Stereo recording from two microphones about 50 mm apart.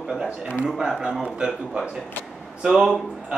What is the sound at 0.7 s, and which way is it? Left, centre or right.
A man's voice, centre.